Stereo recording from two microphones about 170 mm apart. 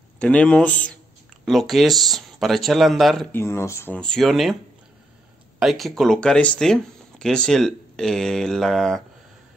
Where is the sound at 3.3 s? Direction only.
15° left (ahead or behind); by 4.5 s centre (ahead or behind).